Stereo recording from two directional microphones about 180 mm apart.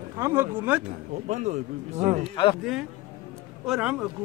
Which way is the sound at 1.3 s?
40° right (ahead or behind).